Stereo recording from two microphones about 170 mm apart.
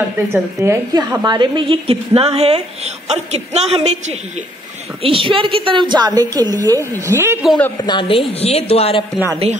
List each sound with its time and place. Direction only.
0.3 s a woman's voice: 15° right (ahead or behind)
0.9 s a woman's voice: 25° right (ahead or behind)
7.4 s a man's voice: 5° left (ahead or behind)
7.8 s a woman's voice: 30° left (ahead or behind)